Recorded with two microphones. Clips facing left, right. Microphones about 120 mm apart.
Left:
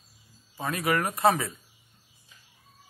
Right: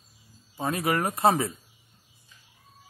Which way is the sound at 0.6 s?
25° right (ahead or behind).